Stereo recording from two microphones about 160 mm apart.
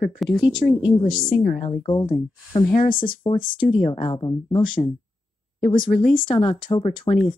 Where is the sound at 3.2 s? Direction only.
25° left (ahead or behind).